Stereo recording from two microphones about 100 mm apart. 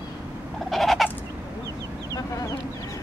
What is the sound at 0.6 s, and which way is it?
Bird, centre (ahead or behind).